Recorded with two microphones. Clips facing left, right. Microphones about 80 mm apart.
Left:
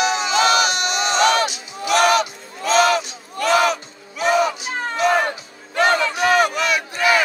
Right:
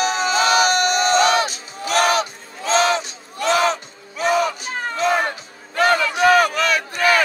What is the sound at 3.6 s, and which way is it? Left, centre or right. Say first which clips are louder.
Crowd: left 1 dB; right.